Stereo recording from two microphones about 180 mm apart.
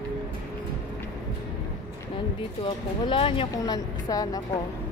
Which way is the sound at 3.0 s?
30° left (ahead or behind).